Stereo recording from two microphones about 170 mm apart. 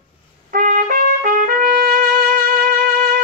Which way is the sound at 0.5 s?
50° right (ahead or behind).